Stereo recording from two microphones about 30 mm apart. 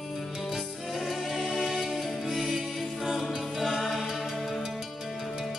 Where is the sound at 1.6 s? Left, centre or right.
Centre.